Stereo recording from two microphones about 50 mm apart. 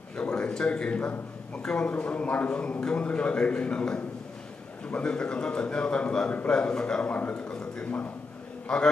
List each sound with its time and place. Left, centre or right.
0.2 s a man's voice: centre